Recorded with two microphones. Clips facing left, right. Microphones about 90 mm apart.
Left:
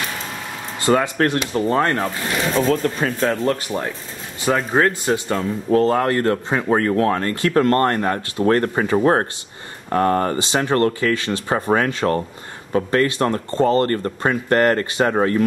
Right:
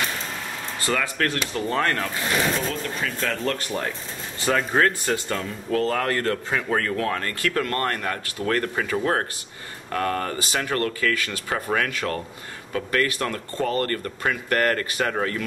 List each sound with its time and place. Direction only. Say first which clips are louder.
0.7 s speech: left 8 dB; 25° left (ahead or behind)
2.5 s speech: left 9 dB; 45° left (ahead or behind)
3.3 s speech: left 5 dB; 15° left (ahead or behind)